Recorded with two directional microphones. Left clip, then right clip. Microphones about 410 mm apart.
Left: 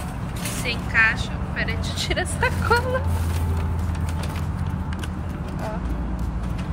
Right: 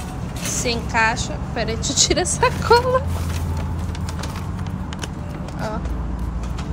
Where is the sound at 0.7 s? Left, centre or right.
Centre.